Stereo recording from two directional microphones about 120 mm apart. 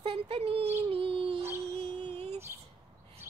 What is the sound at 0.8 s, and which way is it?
Dog, 50° right (ahead or behind).